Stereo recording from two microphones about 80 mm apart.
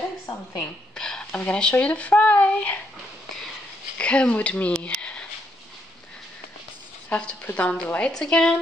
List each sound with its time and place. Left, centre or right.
0.6 s a woman's voice: centre
4.0 s speech: centre
7.1 s speech: centre